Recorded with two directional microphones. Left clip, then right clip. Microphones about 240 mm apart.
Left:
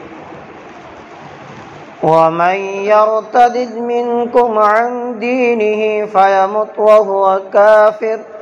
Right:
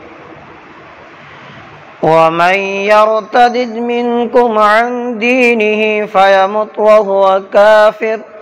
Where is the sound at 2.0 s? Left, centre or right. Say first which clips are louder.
Right 2 dB; right.